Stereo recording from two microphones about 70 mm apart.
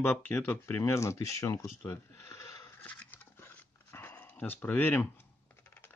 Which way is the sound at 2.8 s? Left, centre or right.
Left.